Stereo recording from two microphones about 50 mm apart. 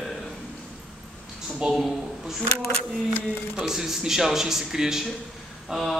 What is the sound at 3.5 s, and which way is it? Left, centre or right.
Speech, centre.